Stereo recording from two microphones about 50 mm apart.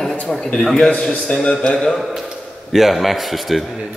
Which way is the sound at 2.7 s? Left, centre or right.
Centre.